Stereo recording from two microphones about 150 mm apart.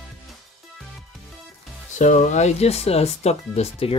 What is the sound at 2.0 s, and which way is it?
Speech, 55° left (ahead or behind).